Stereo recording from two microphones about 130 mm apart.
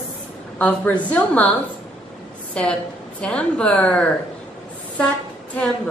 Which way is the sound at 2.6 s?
10° left (ahead or behind).